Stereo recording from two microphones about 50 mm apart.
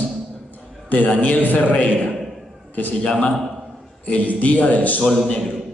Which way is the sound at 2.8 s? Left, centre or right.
Left.